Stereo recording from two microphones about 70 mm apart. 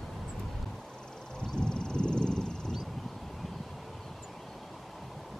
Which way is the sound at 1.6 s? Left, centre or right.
Centre.